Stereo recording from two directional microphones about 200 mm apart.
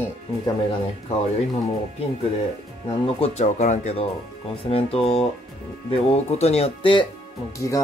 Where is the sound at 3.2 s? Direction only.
35° left (ahead or behind).